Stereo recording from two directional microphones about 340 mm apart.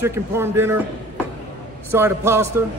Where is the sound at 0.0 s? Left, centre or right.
Centre.